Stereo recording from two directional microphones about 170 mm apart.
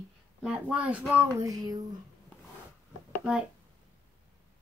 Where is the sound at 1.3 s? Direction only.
20° right (ahead or behind).